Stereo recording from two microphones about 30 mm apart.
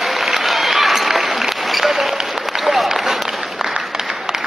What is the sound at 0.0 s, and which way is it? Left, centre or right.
Applause, centre.